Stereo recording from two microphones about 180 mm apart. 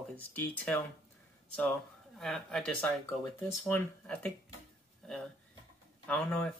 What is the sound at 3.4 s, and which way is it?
Speech, 15° left (ahead or behind).